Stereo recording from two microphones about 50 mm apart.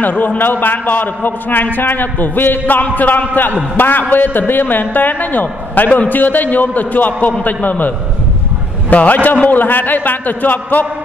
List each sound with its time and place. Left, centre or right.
0.0 s a man's voice: left
8.9 s a man's voice: left